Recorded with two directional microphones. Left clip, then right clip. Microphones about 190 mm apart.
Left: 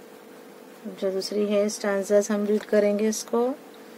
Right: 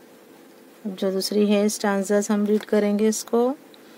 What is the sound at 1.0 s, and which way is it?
Speech, 60° right (ahead or behind).